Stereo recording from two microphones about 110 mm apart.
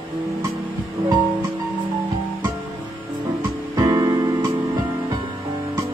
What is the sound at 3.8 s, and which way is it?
Music, 40° right (ahead or behind).